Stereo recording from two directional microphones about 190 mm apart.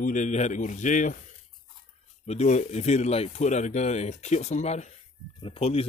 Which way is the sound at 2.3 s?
35° left (ahead or behind).